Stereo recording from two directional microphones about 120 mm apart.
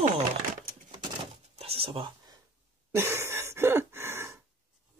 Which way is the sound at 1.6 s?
55° right (ahead or behind).